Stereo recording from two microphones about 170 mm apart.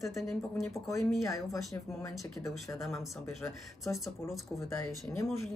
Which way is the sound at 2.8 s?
Centre (ahead or behind).